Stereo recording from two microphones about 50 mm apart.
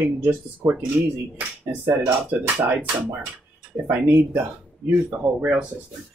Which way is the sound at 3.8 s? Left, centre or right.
Right.